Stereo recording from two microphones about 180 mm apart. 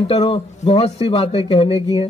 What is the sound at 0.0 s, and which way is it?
Speech, 30° left (ahead or behind).